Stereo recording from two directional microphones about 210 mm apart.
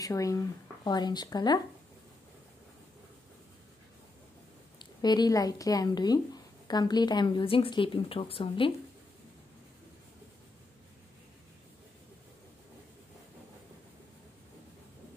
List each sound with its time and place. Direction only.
0.0 s a woman's voice: 15° left (ahead or behind)
4.7 s a woman's voice: 20° left (ahead or behind)